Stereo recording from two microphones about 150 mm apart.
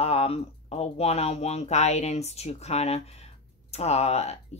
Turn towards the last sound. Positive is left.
turn(degrees=45)  # may be behind; listen again after turning